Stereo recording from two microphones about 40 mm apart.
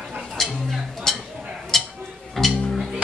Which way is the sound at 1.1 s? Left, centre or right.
Centre.